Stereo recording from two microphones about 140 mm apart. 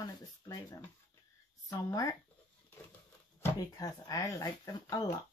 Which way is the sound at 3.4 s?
25° left (ahead or behind).